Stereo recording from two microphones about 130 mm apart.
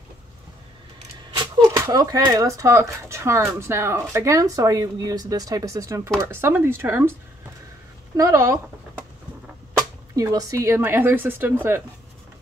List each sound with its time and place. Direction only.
1.6 s speech: 25° right (ahead or behind)
8.2 s speech: 25° right (ahead or behind)
9.8 s speech: 25° right (ahead or behind)